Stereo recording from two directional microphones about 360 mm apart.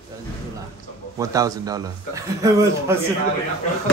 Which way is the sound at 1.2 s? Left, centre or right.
Centre.